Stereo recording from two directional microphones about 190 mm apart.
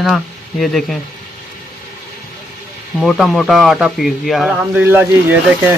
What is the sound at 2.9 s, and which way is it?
Speech, centre (ahead or behind).